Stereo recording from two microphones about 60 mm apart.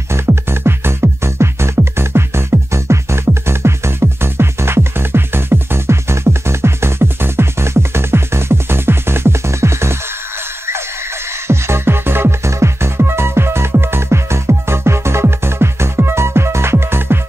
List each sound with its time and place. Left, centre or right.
0.1 s music: right
11.4 s music: right